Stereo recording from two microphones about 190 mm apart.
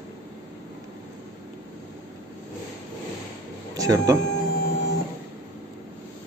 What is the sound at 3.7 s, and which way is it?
Speech, 20° right (ahead or behind).